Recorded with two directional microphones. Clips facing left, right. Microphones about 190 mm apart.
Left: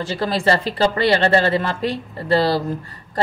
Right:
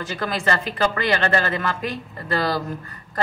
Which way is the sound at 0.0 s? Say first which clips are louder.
Left 5 dB; 30° left (ahead or behind).